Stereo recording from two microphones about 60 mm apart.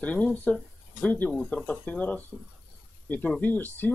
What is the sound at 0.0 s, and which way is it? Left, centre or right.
Speech, left.